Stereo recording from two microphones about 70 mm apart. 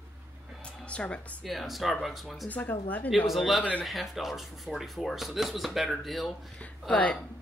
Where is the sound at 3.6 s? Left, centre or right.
Left.